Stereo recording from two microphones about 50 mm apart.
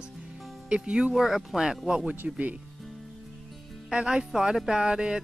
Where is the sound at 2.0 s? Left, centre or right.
Right.